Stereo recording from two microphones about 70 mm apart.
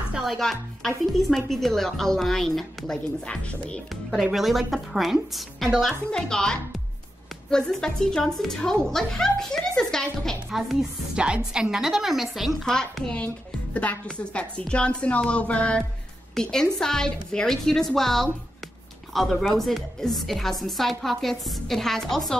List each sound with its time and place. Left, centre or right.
0.1 s music: centre
0.4 s a woman's voice: centre
4.1 s a woman's voice: centre
10.5 s a woman's voice: centre
12.6 s a woman's voice: centre
16.3 s a woman's voice: centre